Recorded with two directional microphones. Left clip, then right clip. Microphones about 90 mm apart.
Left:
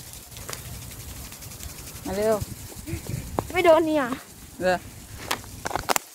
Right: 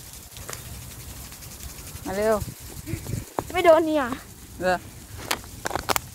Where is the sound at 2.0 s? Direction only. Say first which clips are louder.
Right 1 dB; 5° right (ahead or behind).